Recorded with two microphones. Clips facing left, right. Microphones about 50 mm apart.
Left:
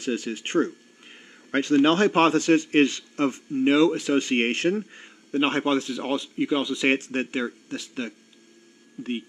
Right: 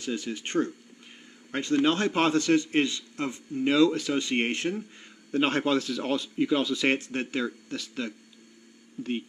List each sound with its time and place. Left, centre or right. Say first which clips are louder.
0.0 s a sound: left 4 dB; left
1.8 s a man's voice: left 5 dB; left
3.5 s speech: left 2 dB; left
4.2 s a man's voice: left 4 dB; left
5.0 s a man's voice: left 1 dB; left